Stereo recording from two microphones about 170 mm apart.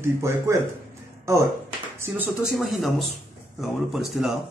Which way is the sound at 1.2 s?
20° right (ahead or behind).